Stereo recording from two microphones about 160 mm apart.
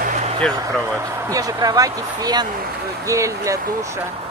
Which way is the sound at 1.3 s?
20° right (ahead or behind).